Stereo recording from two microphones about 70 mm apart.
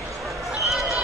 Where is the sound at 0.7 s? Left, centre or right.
Centre.